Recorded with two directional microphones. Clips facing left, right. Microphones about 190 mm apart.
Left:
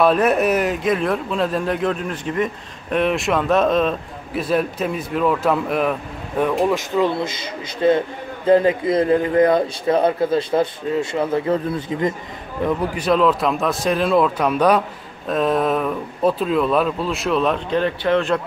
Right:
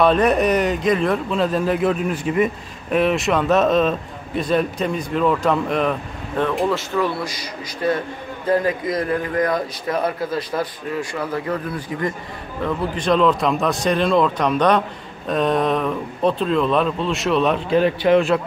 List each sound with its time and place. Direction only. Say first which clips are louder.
0.0 s a man's voice: even; 5° left (ahead or behind); by 12.1 s 25° left (ahead or behind)
12.6 s speech: left 1 dB; 10° left (ahead or behind); by 18.4 s 10° right (ahead or behind)